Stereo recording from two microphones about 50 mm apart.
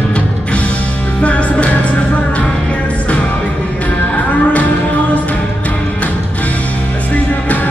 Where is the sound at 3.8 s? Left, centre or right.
Left.